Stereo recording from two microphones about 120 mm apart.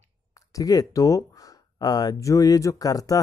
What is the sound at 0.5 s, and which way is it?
Speech, 30° left (ahead or behind).